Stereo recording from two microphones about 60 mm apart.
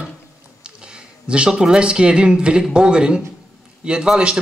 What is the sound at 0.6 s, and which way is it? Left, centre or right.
A man's voice, centre.